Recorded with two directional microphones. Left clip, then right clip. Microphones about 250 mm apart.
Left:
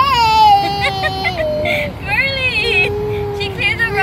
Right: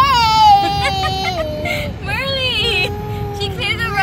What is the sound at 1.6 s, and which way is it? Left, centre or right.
Vehicle, centre.